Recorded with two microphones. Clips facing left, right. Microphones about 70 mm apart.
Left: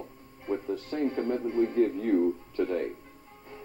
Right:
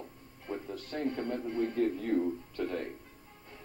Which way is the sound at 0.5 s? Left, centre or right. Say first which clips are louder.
Left 7 dB; left.